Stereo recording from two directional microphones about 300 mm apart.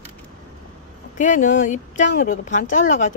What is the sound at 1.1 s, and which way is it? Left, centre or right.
Speech, left.